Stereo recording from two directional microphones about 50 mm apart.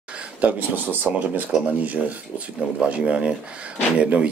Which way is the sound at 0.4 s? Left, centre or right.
Right.